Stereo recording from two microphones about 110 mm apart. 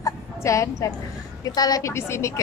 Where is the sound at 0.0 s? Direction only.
30° left (ahead or behind).